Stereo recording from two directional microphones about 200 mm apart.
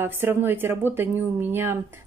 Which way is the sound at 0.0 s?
10° right (ahead or behind).